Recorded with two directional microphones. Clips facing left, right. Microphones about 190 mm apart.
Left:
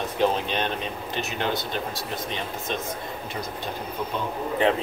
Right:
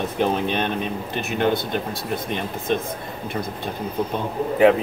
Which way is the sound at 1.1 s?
55° right (ahead or behind).